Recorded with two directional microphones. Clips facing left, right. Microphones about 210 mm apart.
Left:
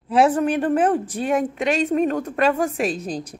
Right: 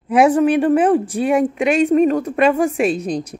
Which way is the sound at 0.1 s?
15° right (ahead or behind).